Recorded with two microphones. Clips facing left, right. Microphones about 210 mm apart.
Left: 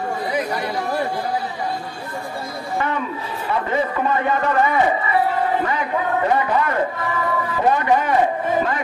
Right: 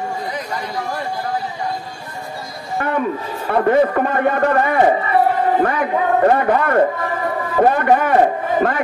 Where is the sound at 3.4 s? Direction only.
55° right (ahead or behind).